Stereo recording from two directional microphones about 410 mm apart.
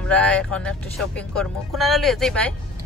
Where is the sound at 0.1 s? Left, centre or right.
Centre.